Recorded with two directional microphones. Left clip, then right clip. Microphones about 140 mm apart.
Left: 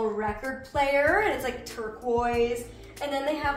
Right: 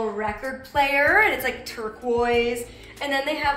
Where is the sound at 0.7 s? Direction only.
10° left (ahead or behind).